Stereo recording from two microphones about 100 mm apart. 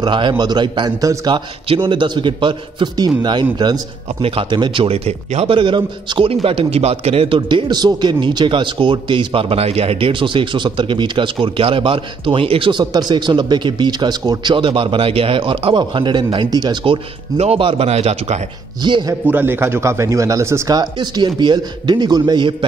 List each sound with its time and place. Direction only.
0.0 s speech: 50° right (ahead or behind)
4.2 s speech: 60° right (ahead or behind); by 5.6 s 90° right
5.6 s a man's voice: 50° right (ahead or behind)
12.9 s a man's voice: 45° right (ahead or behind)
16.8 s speech: 70° right (ahead or behind)
18.8 s speech: 50° right (ahead or behind)
19.2 s speech: 20° right (ahead or behind)
20.7 s speech: 45° right (ahead or behind)